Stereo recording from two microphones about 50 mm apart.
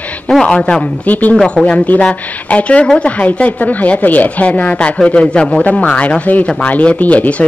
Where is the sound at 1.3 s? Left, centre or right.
Centre.